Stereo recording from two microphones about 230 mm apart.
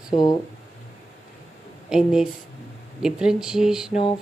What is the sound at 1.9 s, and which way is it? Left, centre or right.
Speech, centre.